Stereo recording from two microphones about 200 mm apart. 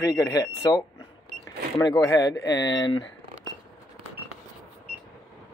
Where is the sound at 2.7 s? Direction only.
65° left (ahead or behind).